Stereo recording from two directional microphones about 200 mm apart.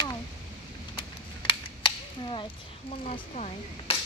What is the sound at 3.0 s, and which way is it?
Speech, 35° left (ahead or behind).